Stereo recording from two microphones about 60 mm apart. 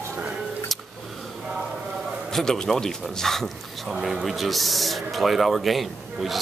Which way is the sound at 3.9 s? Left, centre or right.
Centre.